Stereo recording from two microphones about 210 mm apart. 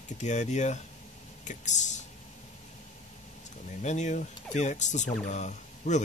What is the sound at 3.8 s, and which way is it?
Speech, 35° left (ahead or behind).